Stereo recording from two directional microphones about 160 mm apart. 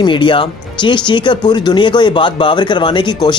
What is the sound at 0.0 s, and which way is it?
Speech, 30° left (ahead or behind).